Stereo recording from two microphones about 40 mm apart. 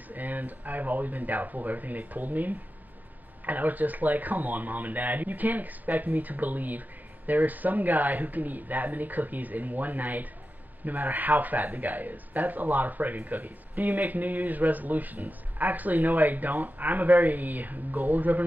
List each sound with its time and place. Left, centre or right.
0.1 s speech: right